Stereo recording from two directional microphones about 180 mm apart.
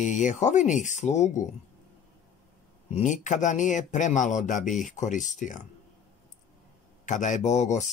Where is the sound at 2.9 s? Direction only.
45° left (ahead or behind).